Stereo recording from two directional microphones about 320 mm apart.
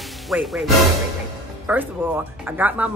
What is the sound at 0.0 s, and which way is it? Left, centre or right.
Music, centre.